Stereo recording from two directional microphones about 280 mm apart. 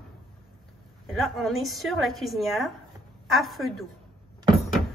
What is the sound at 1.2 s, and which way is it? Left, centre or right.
A woman's voice, centre.